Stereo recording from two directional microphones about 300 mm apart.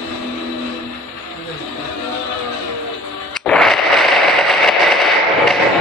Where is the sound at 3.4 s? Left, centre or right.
Centre.